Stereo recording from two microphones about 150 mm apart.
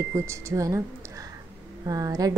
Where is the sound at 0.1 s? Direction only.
15° right (ahead or behind).